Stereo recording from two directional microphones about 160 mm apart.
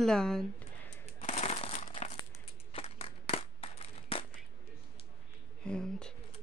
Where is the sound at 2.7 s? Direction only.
35° left (ahead or behind).